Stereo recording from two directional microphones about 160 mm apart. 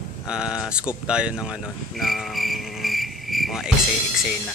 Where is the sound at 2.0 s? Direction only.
Centre (ahead or behind).